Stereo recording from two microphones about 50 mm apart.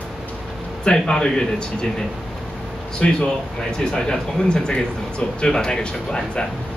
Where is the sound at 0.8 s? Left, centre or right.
Centre.